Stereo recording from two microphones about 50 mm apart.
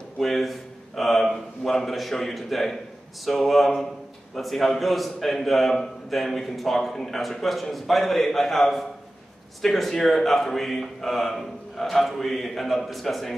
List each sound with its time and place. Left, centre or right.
0.2 s a man's voice: centre